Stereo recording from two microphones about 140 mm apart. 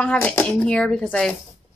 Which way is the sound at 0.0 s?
10° left (ahead or behind).